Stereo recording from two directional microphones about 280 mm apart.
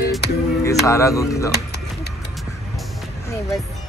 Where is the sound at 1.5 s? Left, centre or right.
Left.